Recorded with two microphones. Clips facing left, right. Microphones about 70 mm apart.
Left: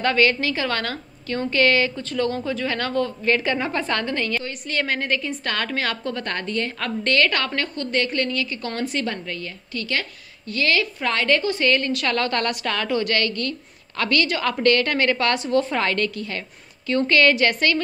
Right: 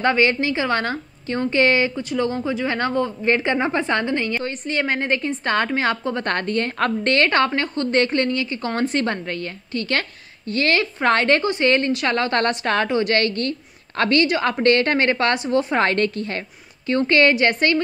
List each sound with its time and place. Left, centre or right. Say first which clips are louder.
0.0 s a woman's voice: right 1 dB; right
6.2 s a woman's voice: right 5 dB; right
11.4 s a woman's voice: right 2 dB; right
15.8 s a woman's voice: right 4 dB; right